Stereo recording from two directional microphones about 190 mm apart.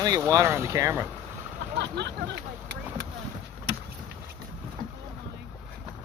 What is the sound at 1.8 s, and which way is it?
Speech, 65° right (ahead or behind).